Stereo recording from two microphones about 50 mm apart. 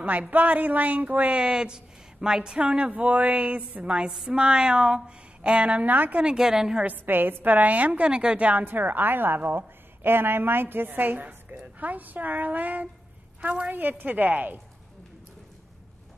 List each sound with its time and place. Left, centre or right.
0.0 s a woman's voice: right
1.4 s speech: centre; by 6.2 s right
6.2 s a woman's voice: centre
6.9 s a woman's voice: right